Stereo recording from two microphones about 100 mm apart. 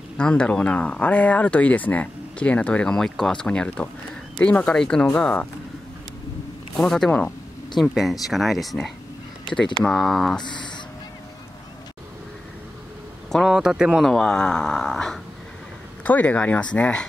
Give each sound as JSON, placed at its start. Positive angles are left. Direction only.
{"t": 0.2, "sound": "speech", "side_deg": 10}
{"t": 6.8, "sound": "speech", "side_deg": 5}
{"t": 7.1, "sound": "a sound", "side_deg": 10}
{"t": 7.9, "sound": "speech", "side_deg": 0}
{"t": 10.4, "sound": "speech", "side_deg": 50}
{"t": 13.3, "sound": "speech", "side_deg": 0}
{"t": 14.0, "sound": "speech", "side_deg": 5}
{"t": 16.0, "sound": "speech", "side_deg": 15}